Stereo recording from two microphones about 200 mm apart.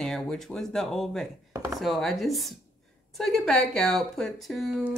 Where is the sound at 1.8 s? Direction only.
Centre (ahead or behind).